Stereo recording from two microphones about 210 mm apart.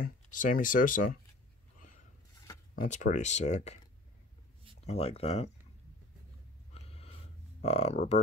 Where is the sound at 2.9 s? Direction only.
35° left (ahead or behind).